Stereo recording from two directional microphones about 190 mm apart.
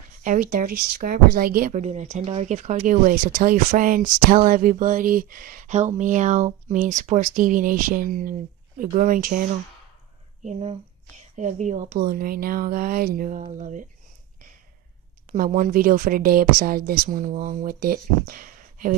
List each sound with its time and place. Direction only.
0.2 s speech: 45° right (ahead or behind)
10.4 s speech: 35° right (ahead or behind)
12.0 s speech: 50° right (ahead or behind)
15.3 s speech: 45° right (ahead or behind)